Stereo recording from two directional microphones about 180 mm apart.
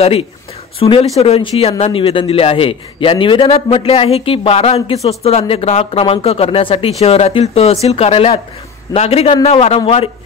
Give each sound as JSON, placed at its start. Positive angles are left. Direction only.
{"t": 0.0, "sound": "a man's voice", "side_deg": 30}